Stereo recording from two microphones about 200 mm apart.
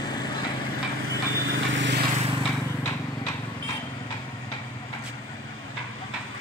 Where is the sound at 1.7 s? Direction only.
65° right (ahead or behind).